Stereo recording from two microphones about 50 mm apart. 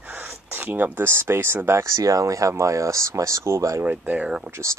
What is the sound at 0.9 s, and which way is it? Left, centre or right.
Speech, right.